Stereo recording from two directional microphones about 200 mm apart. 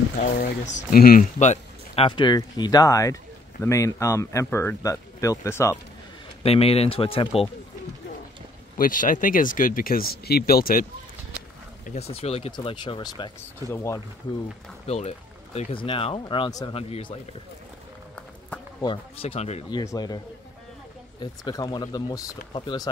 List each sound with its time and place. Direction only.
0.7 s speech: 45° left (ahead or behind); by 5.8 s 15° left (ahead or behind)
6.4 s speech: 30° left (ahead or behind)
8.7 s speech: 45° left (ahead or behind)
11.8 s speech: 35° left (ahead or behind); by 14.0 s 15° left (ahead or behind)
14.9 s speech: 30° left (ahead or behind)
18.8 s speech: 25° left (ahead or behind)
19.8 s speech: 20° left (ahead or behind)
21.2 s speech: 20° left (ahead or behind)